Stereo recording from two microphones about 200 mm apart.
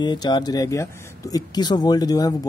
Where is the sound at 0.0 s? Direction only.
20° left (ahead or behind).